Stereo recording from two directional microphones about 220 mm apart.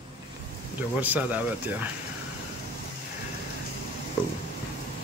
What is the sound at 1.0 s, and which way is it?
Speech, 5° right (ahead or behind).